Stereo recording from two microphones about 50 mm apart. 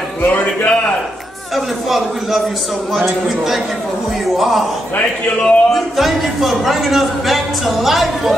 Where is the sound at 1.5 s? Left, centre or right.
Centre.